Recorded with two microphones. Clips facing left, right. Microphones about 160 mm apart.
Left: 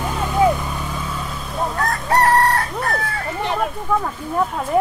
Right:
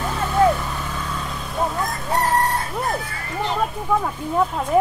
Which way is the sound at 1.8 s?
70° left (ahead or behind).